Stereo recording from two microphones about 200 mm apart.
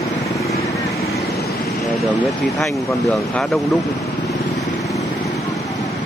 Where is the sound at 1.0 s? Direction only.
Centre (ahead or behind).